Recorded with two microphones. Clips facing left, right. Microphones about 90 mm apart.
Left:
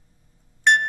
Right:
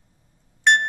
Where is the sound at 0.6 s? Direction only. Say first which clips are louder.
Even; centre (ahead or behind).